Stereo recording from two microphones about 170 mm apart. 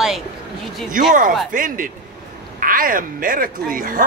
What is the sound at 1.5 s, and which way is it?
Speech, 50° right (ahead or behind).